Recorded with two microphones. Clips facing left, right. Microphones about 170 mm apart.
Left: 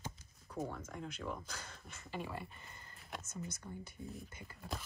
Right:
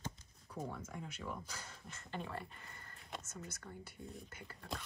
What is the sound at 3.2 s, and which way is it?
Speech, 20° left (ahead or behind).